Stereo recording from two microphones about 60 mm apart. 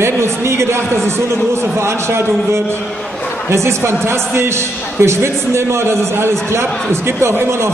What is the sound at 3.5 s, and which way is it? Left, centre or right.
A man's voice, right.